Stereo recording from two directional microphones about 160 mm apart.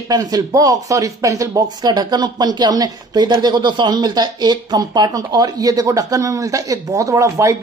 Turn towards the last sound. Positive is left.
turn(degrees=-20)  # may be behind; listen again after turning